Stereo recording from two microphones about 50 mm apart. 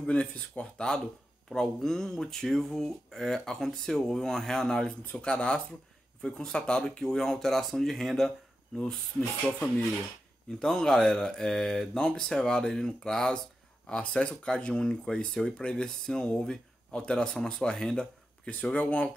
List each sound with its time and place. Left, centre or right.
0.0 s speech: left; by 8.3 s centre
9.5 s speech: left
10.6 s speech: centre; by 19.0 s left